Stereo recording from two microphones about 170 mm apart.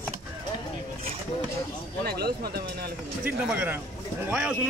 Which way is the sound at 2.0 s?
65° right (ahead or behind).